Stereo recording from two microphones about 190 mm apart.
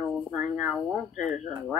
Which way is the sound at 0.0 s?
5° right (ahead or behind).